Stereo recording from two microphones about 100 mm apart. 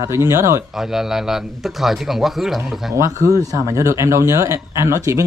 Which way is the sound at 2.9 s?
35° right (ahead or behind).